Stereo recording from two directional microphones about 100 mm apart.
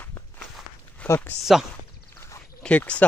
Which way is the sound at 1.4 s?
5° right (ahead or behind).